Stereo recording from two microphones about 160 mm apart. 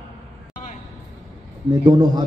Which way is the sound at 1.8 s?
25° right (ahead or behind).